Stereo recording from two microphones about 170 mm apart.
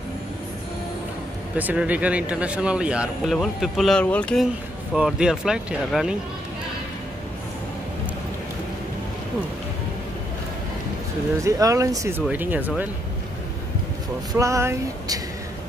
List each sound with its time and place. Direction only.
1.6 s speech: 10° right (ahead or behind)
11.4 s speech: 20° right (ahead or behind)
14.3 s speech: 20° right (ahead or behind)